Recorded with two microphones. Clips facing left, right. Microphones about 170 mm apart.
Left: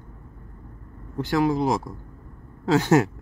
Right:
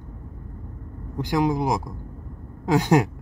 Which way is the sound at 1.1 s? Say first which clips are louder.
Left 1 dB; 15° right (ahead or behind).